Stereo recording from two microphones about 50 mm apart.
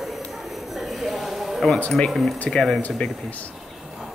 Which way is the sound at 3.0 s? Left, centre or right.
Left.